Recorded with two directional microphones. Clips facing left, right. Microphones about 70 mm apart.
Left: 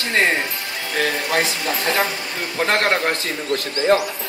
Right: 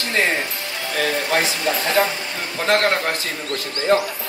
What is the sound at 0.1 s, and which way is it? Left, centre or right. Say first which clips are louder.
Speech: left 2 dB; left.